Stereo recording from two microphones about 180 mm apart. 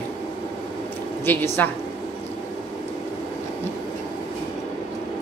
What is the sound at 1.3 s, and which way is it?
Speech, 15° left (ahead or behind).